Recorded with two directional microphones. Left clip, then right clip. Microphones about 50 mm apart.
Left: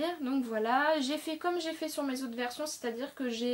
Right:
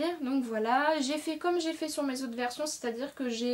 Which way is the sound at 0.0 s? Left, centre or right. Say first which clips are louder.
Right 2 dB; right.